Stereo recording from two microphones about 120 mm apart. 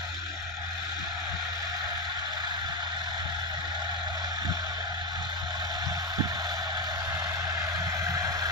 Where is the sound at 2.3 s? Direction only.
40° right (ahead or behind).